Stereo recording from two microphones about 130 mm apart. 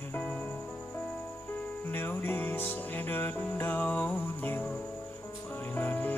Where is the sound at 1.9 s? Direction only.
15° left (ahead or behind).